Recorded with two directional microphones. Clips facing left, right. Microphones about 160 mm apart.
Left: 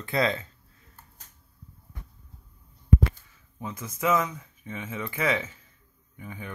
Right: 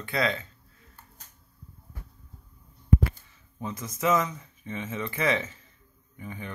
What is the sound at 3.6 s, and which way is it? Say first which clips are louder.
Speech: right 1 dB; 10° left (ahead or behind).